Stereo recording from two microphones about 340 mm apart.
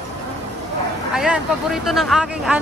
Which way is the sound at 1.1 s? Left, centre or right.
Centre.